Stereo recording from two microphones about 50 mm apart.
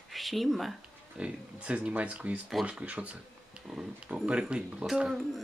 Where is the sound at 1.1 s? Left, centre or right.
Right.